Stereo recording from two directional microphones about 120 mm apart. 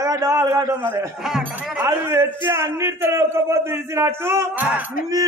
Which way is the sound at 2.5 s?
20° right (ahead or behind).